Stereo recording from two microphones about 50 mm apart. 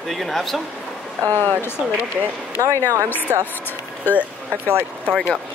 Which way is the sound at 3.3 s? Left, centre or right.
Right.